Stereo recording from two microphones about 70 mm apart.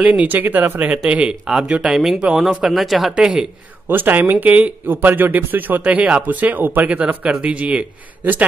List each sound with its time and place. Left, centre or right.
0.0 s speech: right
3.9 s speech: right